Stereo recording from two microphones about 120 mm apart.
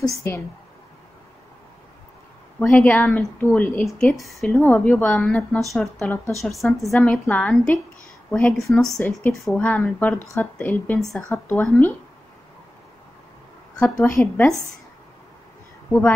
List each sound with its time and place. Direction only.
0.0 s a woman's voice: 25° left (ahead or behind)
2.6 s a woman's voice: 20° left (ahead or behind)
3.8 s a woman's voice: centre (ahead or behind)
4.6 s a woman's voice: 15° left (ahead or behind)
5.9 s a woman's voice: 15° left (ahead or behind)
6.4 s a woman's voice: centre (ahead or behind)
13.9 s a woman's voice: 20° left (ahead or behind)